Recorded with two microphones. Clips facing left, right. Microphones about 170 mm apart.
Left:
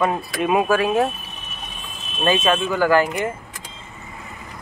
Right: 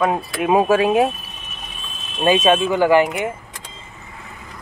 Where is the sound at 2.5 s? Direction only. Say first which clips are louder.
Right 3 dB; 25° right (ahead or behind).